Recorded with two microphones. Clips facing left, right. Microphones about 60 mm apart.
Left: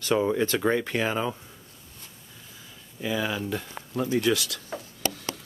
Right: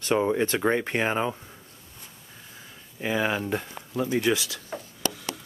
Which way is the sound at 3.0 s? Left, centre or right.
Right.